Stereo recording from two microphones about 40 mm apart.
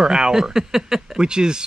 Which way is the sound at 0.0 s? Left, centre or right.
Centre.